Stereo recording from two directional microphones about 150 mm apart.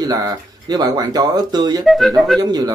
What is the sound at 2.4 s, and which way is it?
Speech, 25° right (ahead or behind).